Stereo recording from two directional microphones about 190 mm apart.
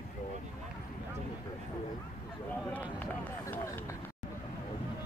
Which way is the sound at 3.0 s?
10° left (ahead or behind).